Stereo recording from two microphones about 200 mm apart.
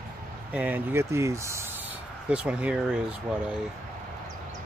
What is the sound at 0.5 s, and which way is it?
Speech, 10° right (ahead or behind).